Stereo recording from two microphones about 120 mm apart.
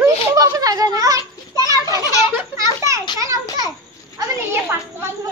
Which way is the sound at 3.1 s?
25° right (ahead or behind).